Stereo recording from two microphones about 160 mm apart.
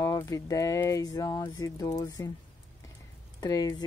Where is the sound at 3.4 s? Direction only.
25° left (ahead or behind).